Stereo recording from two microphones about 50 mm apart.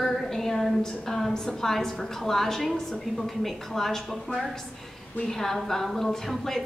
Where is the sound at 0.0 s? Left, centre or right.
Centre.